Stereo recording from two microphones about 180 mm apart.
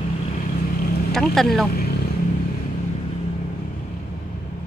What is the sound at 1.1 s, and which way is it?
Speech, centre (ahead or behind).